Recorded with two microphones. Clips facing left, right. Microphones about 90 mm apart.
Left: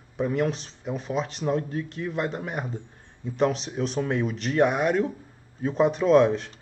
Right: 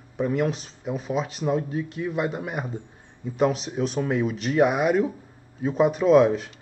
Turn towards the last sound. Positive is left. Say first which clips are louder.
# right 2 dB
turn(degrees=-5)  # may be behind; listen again after turning